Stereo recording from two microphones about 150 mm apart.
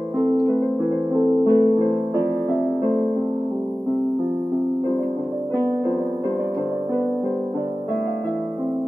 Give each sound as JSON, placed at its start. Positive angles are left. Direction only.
{"t": 1.2, "sound": "music", "side_deg": -30}